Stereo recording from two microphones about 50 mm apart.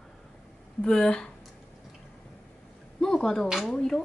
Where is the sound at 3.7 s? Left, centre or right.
Centre.